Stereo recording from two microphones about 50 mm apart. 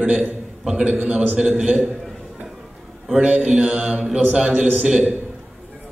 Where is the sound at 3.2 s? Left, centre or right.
Right.